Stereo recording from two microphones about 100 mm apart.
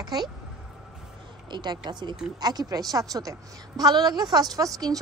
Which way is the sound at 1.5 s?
50° right (ahead or behind).